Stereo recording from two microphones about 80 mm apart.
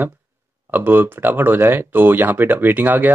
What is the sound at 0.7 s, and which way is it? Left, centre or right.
Speech, right.